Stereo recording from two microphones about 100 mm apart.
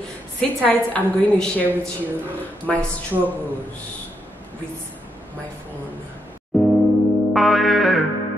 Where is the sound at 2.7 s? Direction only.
10° left (ahead or behind).